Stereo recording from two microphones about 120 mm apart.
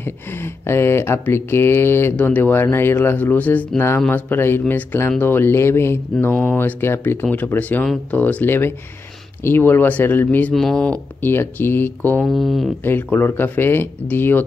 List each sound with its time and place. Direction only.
0.0 s speech: 20° left (ahead or behind)
10.5 s speech: 5° left (ahead or behind)
12.2 s speech: centre (ahead or behind)
12.8 s speech: 15° left (ahead or behind)